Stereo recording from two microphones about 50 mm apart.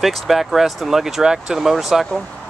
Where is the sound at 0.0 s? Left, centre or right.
Centre.